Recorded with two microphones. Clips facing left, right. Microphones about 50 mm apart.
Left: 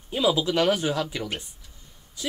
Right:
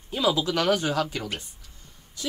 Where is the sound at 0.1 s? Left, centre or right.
Centre.